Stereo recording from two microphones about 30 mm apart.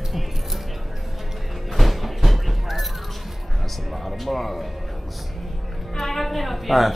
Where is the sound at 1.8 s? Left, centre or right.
Centre.